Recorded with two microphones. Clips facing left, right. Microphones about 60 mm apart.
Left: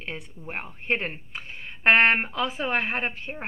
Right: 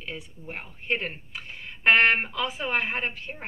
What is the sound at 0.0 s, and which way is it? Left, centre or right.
Speech, left.